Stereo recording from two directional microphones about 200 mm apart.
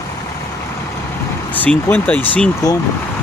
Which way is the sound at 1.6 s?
5° left (ahead or behind).